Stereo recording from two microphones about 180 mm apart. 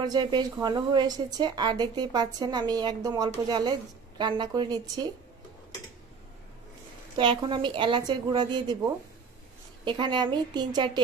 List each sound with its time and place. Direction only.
0.0 s a woman's voice: 25° right (ahead or behind)
7.2 s a woman's voice: 25° right (ahead or behind)